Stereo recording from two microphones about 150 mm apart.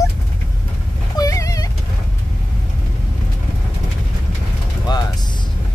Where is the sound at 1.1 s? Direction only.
25° left (ahead or behind).